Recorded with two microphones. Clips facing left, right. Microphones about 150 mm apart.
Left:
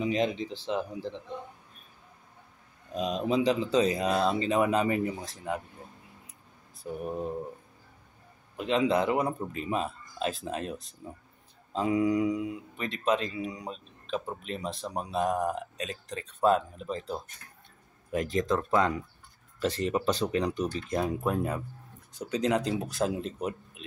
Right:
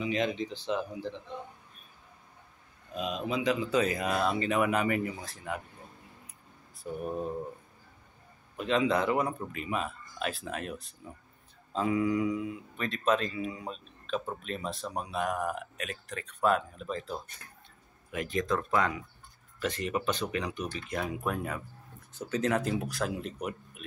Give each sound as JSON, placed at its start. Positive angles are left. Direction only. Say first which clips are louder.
{"t": 0.0, "sound": "speech", "louder": "left 2 dB", "side_deg": 35}
{"t": 2.9, "sound": "speech", "louder": "left 4 dB", "side_deg": 35}
{"t": 8.5, "sound": "speech", "louder": "left 2 dB", "side_deg": 25}